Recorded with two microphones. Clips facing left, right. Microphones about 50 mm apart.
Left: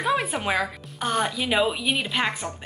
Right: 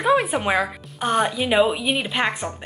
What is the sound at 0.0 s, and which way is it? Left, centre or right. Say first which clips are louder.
A woman's voice: right 5 dB; centre.